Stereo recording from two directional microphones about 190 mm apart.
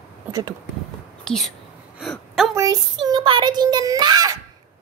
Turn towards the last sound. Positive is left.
turn(degrees=-20)  # may be behind; listen again after turning